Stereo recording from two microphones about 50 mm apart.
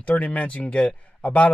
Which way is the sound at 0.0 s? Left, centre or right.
Left.